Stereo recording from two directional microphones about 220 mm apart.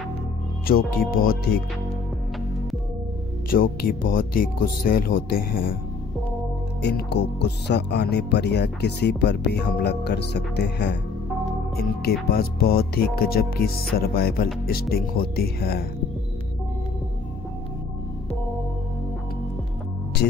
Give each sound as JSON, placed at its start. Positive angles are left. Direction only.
{"t": 0.7, "sound": "speech", "side_deg": 45}
{"t": 3.4, "sound": "speech", "side_deg": 40}
{"t": 6.8, "sound": "speech", "side_deg": 50}